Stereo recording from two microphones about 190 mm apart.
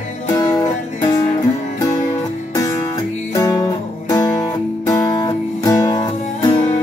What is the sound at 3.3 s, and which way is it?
Music, 15° left (ahead or behind).